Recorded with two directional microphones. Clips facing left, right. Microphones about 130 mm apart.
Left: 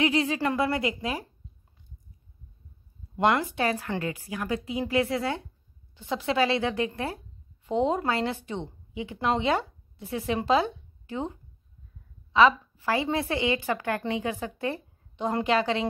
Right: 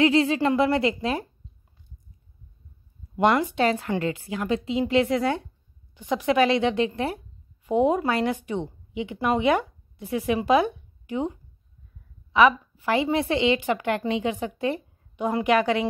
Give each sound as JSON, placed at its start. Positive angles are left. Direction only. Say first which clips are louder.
{"t": 0.0, "sound": "a woman's voice", "louder": "right 5 dB", "side_deg": -30}
{"t": 0.8, "sound": "speech", "louder": "right 5 dB", "side_deg": 15}
{"t": 3.2, "sound": "a woman's voice", "louder": "right 3 dB", "side_deg": -20}
{"t": 6.3, "sound": "a woman's voice", "louder": "right 4 dB", "side_deg": -20}
{"t": 9.6, "sound": "a sound", "louder": "right 3 dB", "side_deg": -15}
{"t": 10.4, "sound": "a woman's voice", "louder": "right 2 dB", "side_deg": -15}